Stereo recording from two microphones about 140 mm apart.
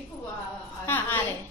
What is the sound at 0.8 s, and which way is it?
Speech, 15° left (ahead or behind).